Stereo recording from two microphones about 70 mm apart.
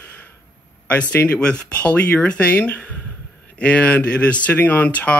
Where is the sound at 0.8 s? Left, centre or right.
Centre.